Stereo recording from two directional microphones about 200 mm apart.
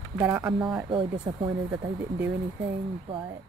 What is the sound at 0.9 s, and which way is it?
Speech, 25° right (ahead or behind).